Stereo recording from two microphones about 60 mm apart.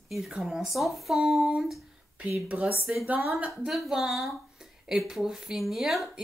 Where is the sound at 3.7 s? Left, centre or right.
Centre.